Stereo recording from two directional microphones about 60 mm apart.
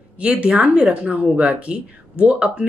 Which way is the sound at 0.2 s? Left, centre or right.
Centre.